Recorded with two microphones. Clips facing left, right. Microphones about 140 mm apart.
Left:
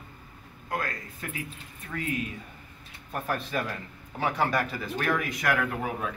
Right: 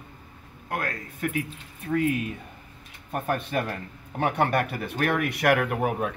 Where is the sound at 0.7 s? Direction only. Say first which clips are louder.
Right 2 dB; 65° right (ahead or behind).